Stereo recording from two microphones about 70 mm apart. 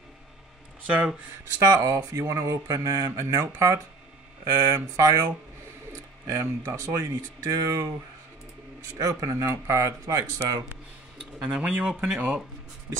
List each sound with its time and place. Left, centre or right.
0.8 s speech: centre
1.6 s speech: right
8.9 s speech: right
11.4 s speech: centre